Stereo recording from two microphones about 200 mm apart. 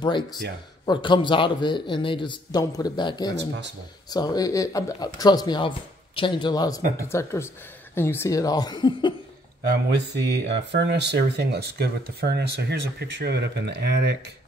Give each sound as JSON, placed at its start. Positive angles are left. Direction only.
{"t": 0.8, "sound": "speech", "side_deg": 25}
{"t": 9.9, "sound": "speech", "side_deg": -60}